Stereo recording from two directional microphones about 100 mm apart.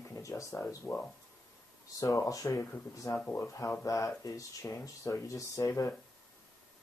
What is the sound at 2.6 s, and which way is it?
Speech, 20° left (ahead or behind).